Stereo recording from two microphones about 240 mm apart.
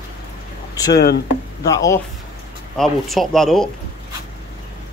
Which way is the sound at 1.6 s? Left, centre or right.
Centre.